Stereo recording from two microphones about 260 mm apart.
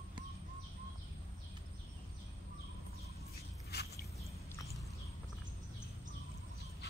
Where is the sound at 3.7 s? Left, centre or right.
Left.